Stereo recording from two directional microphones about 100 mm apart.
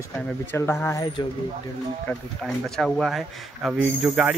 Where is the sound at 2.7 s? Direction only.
5° left (ahead or behind).